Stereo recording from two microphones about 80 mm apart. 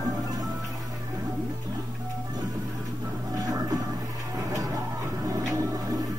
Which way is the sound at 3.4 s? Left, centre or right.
Right.